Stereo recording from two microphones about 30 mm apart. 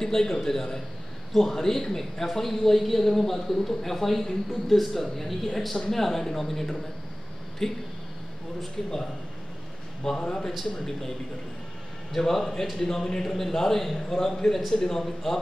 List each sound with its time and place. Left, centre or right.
0.0 s a man's voice: centre
10.1 s a man's voice: left
12.1 s a man's voice: centre
13.9 s a man's voice: left